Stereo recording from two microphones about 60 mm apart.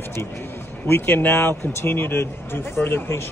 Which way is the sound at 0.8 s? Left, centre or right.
Left.